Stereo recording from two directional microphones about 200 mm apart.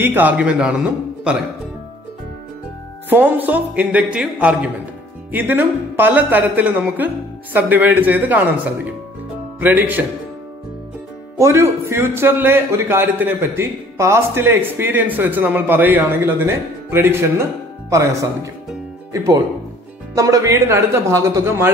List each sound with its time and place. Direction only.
0.0 s a man's voice: 10° right (ahead or behind)
3.1 s a man's voice: 10° right (ahead or behind)
11.3 s a man's voice: 15° right (ahead or behind)